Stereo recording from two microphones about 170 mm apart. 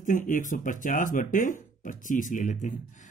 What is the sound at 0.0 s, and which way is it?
Speech, 50° left (ahead or behind).